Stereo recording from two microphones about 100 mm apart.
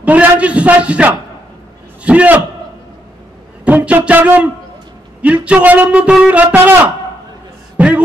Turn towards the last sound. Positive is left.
turn(degrees=-10)  # may be behind; listen again after turning